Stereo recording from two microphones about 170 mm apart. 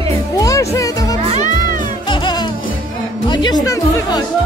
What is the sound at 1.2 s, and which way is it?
Music, 40° right (ahead or behind).